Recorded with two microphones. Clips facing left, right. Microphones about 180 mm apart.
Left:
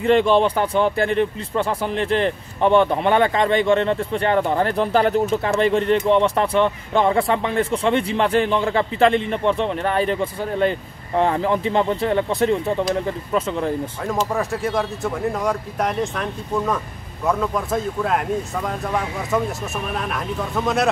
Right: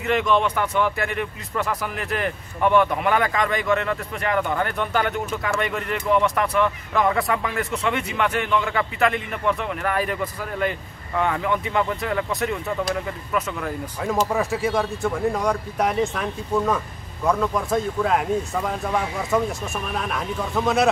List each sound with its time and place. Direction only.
0.0 s speech: 30° left (ahead or behind)
14.0 s speech: centre (ahead or behind)